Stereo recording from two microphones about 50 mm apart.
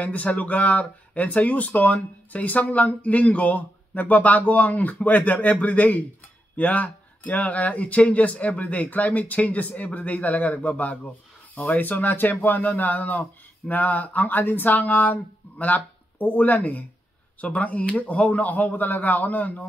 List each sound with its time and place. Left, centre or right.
0.0 s speech: left